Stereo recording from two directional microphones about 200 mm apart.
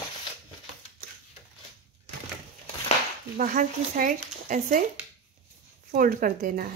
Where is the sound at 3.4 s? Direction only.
45° right (ahead or behind).